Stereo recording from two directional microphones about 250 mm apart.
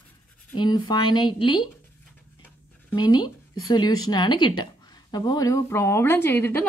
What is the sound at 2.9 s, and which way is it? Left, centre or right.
A woman's voice, centre.